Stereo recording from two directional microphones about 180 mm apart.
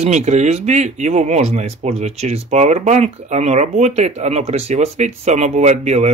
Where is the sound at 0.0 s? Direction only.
35° right (ahead or behind).